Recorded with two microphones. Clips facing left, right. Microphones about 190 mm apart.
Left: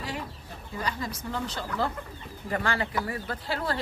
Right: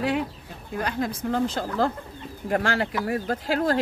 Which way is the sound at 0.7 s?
60° right (ahead or behind).